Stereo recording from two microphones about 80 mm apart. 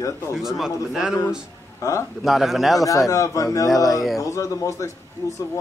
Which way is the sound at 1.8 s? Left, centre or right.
Left.